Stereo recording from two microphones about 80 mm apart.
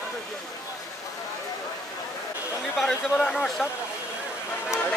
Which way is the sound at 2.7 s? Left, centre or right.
Centre.